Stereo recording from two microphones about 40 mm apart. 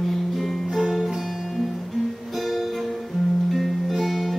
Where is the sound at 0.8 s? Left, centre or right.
Centre.